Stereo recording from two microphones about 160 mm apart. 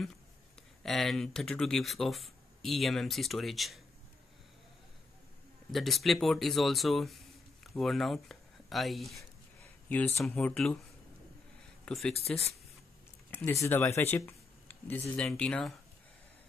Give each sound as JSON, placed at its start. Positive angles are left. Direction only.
{"t": 0.8, "sound": "speech", "side_deg": 0}
{"t": 5.7, "sound": "speech", "side_deg": 0}
{"t": 9.8, "sound": "speech", "side_deg": 10}
{"t": 11.8, "sound": "speech", "side_deg": 5}
{"t": 13.3, "sound": "speech", "side_deg": 15}